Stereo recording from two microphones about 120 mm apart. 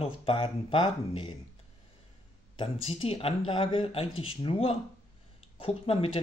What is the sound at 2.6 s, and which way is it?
Speech, 50° left (ahead or behind).